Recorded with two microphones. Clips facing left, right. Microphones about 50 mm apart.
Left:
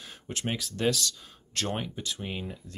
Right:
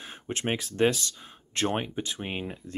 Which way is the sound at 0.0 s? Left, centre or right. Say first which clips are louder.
Right 3 dB; right.